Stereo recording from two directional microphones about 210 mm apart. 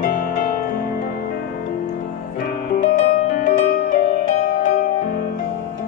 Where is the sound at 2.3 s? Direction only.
45° left (ahead or behind).